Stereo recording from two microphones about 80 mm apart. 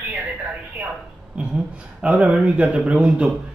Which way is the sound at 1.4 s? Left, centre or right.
Centre.